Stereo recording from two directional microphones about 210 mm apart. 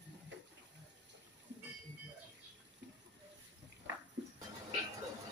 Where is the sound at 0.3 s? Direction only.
60° right (ahead or behind).